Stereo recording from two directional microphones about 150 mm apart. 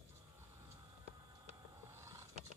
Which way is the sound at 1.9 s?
20° right (ahead or behind).